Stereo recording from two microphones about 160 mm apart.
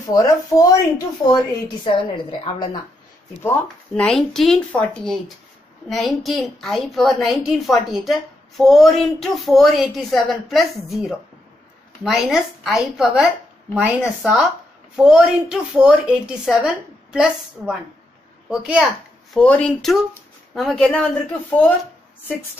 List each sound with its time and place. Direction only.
0.1 s speech: 20° left (ahead or behind)
1.9 s speech: 30° left (ahead or behind)
3.4 s a woman's voice: 5° left (ahead or behind)
19.3 s a woman's voice: 5° left (ahead or behind)